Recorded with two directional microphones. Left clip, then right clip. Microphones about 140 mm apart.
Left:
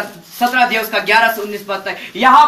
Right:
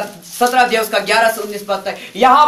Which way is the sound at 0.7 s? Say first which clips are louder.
Even; 35° right (ahead or behind).